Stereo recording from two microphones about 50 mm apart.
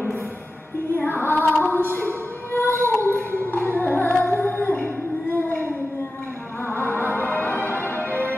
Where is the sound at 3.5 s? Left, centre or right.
Left.